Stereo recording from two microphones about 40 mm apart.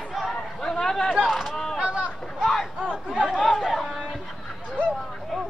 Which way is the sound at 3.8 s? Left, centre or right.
Centre.